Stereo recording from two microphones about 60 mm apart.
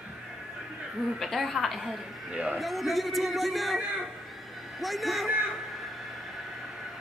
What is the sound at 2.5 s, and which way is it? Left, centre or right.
A man's voice, centre.